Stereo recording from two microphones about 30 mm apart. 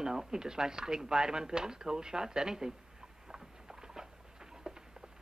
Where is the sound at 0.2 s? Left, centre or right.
Right.